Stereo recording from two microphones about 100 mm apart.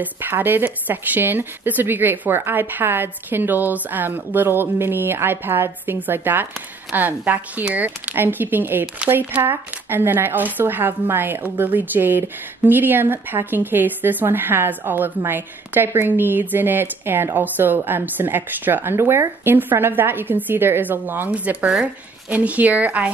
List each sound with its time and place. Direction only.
0.0 s speech: 20° right (ahead or behind)